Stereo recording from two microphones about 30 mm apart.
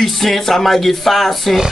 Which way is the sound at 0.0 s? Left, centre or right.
Centre.